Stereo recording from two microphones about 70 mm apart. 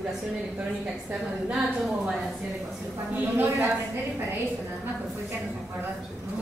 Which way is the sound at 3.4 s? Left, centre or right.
Right.